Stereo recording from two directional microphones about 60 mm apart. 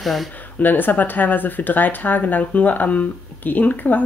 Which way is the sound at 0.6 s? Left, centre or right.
Left.